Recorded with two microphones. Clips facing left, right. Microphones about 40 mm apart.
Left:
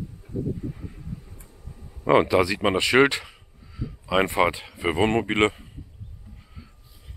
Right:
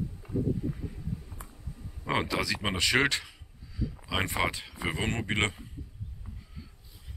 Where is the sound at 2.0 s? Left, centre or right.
Centre.